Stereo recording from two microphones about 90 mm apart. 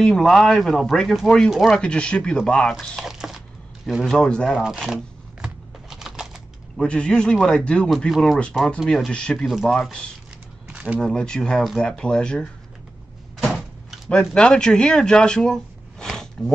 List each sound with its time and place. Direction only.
0.0 s a man's voice: 5° left (ahead or behind)
2.7 s speech: 5° right (ahead or behind)
4.5 s typing: 5° right (ahead or behind)
6.8 s a man's voice: 10° left (ahead or behind)
10.7 s a sound: 15° right (ahead or behind)
11.0 s a man's voice: 10° left (ahead or behind)
13.8 s a sound: 5° left (ahead or behind)
14.3 s speech: 10° left (ahead or behind)